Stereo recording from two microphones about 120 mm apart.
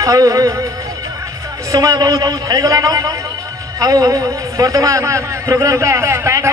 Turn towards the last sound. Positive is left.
turn(degrees=-25)  # may be behind; listen again after turning